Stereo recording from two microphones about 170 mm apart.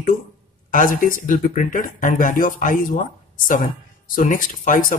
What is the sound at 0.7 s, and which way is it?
Speech, 55° left (ahead or behind).